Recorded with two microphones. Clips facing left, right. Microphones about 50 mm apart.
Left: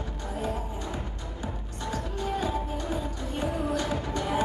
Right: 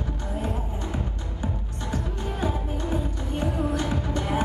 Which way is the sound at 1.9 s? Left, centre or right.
Right.